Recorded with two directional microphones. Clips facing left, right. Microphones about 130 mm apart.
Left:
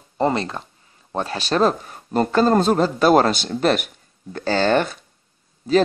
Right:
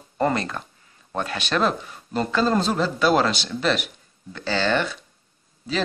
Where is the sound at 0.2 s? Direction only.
25° left (ahead or behind).